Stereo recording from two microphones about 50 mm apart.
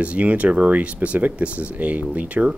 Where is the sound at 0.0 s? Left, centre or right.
Right.